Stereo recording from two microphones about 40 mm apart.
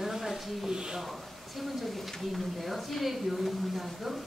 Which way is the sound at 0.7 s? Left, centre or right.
Centre.